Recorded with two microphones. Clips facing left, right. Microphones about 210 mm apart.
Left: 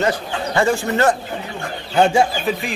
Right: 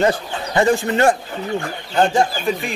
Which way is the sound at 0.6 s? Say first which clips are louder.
Right 2 dB; 20° right (ahead or behind).